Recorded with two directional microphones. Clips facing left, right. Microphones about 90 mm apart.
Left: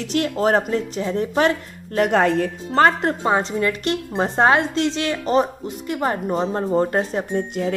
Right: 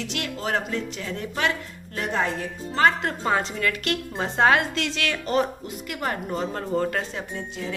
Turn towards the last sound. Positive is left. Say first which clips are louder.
# left 9 dB
turn(degrees=40)  # may be behind; listen again after turning